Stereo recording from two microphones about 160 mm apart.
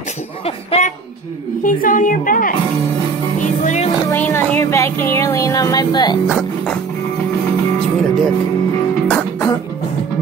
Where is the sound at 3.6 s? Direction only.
45° left (ahead or behind).